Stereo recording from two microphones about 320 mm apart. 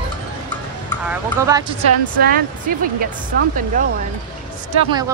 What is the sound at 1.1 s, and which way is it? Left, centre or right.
Speech, centre.